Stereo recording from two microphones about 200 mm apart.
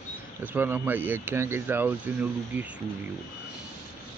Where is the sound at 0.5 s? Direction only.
10° right (ahead or behind).